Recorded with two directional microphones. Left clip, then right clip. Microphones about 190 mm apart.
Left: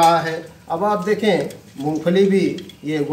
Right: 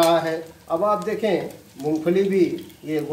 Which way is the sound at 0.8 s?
5° right (ahead or behind).